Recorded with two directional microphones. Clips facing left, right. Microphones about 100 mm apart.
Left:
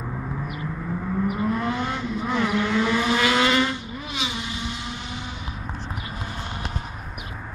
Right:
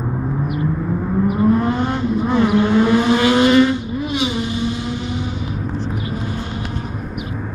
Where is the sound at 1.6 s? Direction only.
40° right (ahead or behind).